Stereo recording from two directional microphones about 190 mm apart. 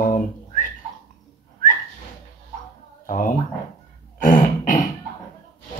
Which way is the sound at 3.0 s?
45° left (ahead or behind).